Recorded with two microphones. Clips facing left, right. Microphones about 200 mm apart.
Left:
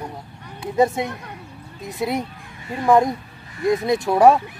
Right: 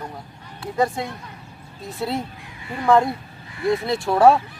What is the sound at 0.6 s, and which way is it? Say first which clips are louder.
Speech: left 4 dB; 20° left (ahead or behind).